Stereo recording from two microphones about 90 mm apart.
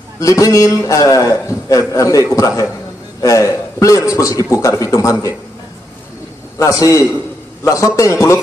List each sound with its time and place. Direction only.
0.2 s a man's voice: 35° left (ahead or behind)
6.6 s a man's voice: 35° left (ahead or behind)